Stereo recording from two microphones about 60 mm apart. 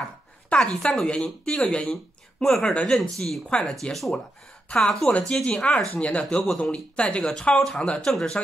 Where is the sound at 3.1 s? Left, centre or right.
Centre.